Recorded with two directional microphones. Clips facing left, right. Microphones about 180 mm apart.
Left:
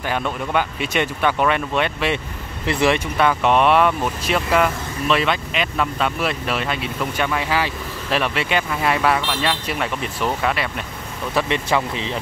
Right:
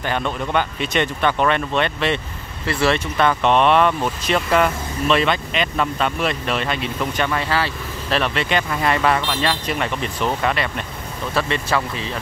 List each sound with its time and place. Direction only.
0.0 s speech: 5° left (ahead or behind)
11.3 s speech: 15° left (ahead or behind)